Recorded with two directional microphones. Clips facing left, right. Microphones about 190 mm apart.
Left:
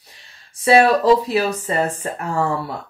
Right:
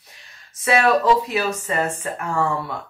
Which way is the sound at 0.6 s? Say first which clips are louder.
Left 4 dB; 35° left (ahead or behind).